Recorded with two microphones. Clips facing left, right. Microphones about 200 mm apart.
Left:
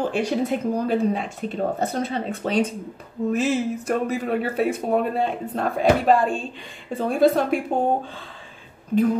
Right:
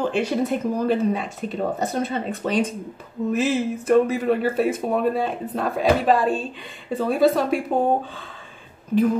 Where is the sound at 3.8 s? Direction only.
5° right (ahead or behind).